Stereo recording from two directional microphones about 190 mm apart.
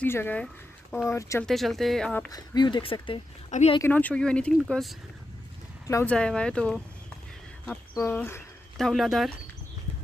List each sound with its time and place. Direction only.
0.0 s speech: 10° left (ahead or behind)
1.4 s speech: centre (ahead or behind)
2.3 s speech: 20° left (ahead or behind)
3.8 s speech: 10° left (ahead or behind)
5.9 s speech: 15° left (ahead or behind)
7.9 s speech: 15° left (ahead or behind)
8.7 s speech: centre (ahead or behind)